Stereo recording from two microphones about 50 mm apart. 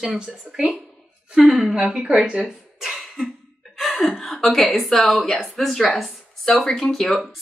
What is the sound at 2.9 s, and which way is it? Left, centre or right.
Cough, centre.